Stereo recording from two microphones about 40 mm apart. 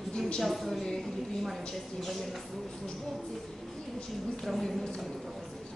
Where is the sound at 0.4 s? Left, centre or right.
Centre.